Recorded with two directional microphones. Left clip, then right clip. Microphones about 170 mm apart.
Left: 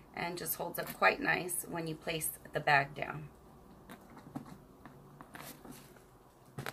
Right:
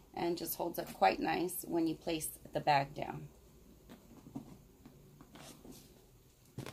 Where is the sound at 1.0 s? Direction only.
55° right (ahead or behind).